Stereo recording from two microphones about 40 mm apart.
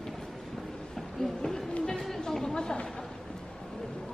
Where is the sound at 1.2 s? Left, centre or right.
Centre.